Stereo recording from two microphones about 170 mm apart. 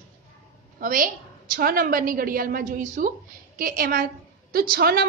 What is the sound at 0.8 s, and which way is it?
A woman's voice, 55° right (ahead or behind).